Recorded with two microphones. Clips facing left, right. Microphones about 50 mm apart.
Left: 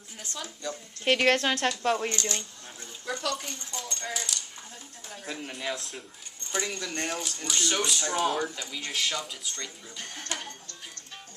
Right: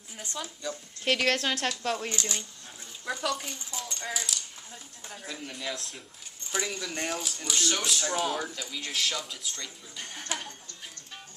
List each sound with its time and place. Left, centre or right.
0.4 s speech: centre
1.0 s a woman's voice: centre
5.2 s a man's voice: centre
5.7 s speech: centre
9.9 s speech: centre